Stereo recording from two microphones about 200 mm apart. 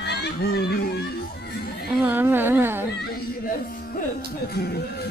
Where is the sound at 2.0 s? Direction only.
10° right (ahead or behind).